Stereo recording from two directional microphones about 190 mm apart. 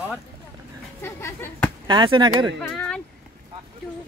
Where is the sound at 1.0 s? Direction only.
10° left (ahead or behind).